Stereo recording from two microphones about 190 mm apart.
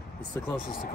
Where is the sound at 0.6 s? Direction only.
45° left (ahead or behind).